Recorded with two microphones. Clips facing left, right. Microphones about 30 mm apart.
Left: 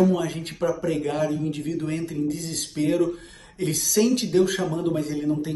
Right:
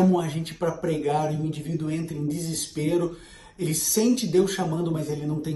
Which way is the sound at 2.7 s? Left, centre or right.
Left.